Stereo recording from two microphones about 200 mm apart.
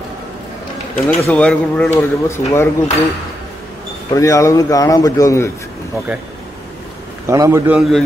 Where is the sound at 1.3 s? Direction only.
5° left (ahead or behind).